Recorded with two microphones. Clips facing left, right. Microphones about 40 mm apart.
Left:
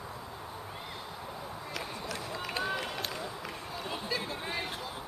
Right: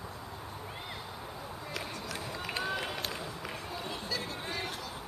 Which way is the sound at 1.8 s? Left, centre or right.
Centre.